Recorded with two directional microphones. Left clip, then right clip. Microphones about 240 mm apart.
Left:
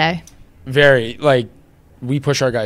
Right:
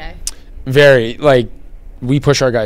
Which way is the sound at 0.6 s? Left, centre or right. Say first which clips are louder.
Right 4 dB; centre.